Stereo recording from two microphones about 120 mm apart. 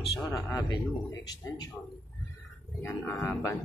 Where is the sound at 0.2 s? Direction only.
Centre (ahead or behind).